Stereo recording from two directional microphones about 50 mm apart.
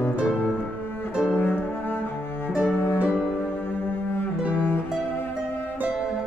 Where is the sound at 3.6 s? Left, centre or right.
Left.